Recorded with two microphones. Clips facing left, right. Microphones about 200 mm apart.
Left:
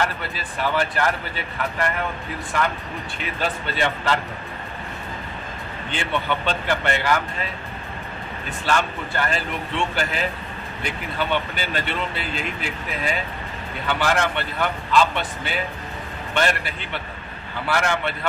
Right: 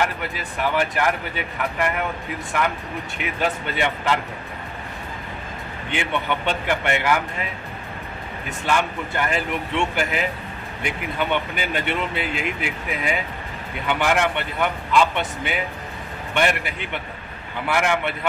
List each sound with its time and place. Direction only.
0.0 s speech: 15° right (ahead or behind)
5.9 s speech: 15° right (ahead or behind)
8.6 s speech: 15° right (ahead or behind)